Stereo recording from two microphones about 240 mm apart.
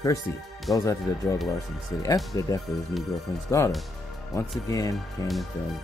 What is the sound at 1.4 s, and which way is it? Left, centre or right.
Speech, centre.